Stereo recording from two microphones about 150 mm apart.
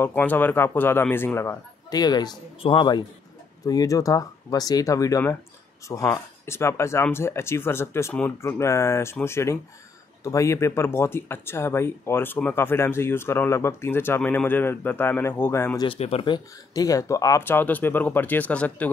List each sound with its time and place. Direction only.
0.0 s speech: 10° left (ahead or behind)
15.8 s speech: 40° left (ahead or behind)
16.7 s speech: 20° left (ahead or behind)